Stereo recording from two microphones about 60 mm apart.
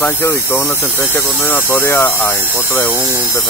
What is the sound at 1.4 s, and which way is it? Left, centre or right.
Speech, left.